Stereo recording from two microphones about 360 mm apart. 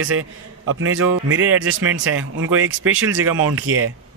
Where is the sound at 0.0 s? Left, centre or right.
Right.